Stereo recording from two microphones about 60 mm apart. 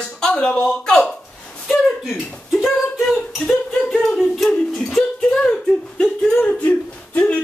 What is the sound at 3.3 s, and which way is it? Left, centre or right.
Speech, centre.